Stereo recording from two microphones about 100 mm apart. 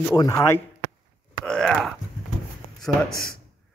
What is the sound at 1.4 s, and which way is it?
Groan, 5° left (ahead or behind).